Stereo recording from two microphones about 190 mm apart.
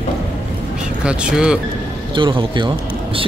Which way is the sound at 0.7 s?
5° right (ahead or behind).